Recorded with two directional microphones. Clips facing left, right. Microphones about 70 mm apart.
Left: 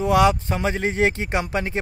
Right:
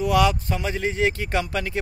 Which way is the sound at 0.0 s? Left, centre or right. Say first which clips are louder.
Left 2 dB; left.